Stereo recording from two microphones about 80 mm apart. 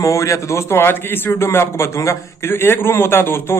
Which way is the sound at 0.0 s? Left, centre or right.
Left.